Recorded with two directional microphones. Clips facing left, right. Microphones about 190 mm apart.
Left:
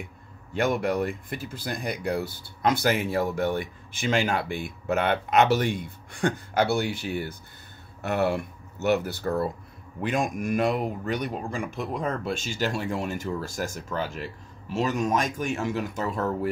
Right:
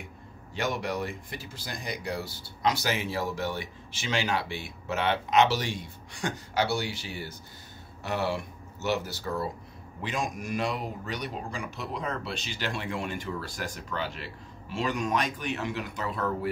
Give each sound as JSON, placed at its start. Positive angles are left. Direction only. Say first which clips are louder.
{"t": 0.6, "sound": "speech", "louder": "left 6 dB", "side_deg": 55}